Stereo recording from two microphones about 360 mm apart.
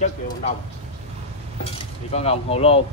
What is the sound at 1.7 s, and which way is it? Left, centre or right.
Speech, centre.